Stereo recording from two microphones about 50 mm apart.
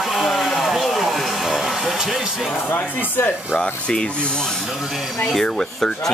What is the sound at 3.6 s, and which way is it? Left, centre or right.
Speech, centre.